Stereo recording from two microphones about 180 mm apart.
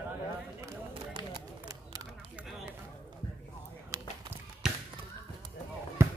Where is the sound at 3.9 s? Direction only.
20° right (ahead or behind).